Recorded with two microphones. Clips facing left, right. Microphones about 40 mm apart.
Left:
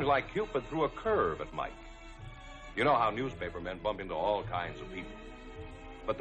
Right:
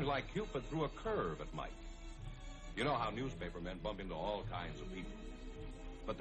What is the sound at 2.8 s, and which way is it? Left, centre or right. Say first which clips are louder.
A man's voice: left 10 dB; left.